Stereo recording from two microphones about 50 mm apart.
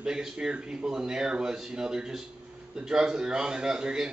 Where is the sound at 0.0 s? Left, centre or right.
Centre.